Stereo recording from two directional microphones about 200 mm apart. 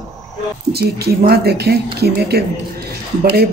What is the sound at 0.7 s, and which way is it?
Speech, 50° right (ahead or behind).